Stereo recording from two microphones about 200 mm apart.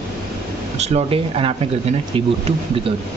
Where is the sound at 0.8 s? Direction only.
30° right (ahead or behind).